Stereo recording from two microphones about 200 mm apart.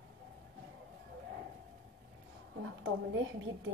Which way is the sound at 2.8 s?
70° right (ahead or behind).